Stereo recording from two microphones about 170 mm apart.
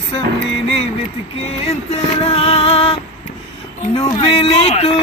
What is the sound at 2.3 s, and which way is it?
Speech, 35° left (ahead or behind).